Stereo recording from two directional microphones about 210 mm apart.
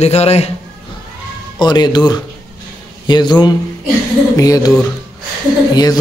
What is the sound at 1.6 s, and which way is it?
Speech, 20° left (ahead or behind).